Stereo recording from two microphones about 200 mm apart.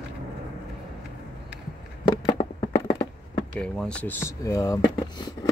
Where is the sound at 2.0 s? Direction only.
25° left (ahead or behind).